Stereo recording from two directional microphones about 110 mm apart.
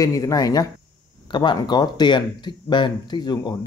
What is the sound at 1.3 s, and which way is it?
Speech, 45° left (ahead or behind).